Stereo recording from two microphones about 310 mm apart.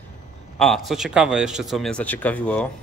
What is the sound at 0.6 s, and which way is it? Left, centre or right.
A man's voice, centre.